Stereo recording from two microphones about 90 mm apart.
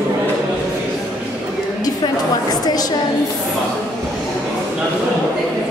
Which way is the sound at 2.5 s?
45° left (ahead or behind).